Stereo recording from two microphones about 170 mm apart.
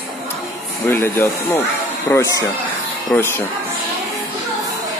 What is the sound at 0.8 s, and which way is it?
Speech, 15° left (ahead or behind).